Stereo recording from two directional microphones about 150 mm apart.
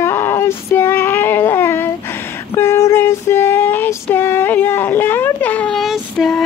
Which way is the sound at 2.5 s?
15° left (ahead or behind).